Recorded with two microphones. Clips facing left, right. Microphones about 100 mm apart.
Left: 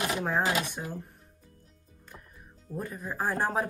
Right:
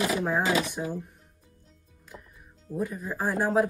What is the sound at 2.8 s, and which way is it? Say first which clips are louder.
Speech: right 3 dB; centre (ahead or behind).